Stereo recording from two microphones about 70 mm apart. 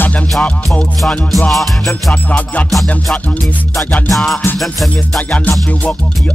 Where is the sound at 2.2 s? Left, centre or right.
Left.